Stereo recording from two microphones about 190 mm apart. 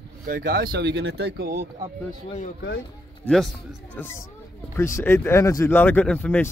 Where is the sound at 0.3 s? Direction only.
55° right (ahead or behind).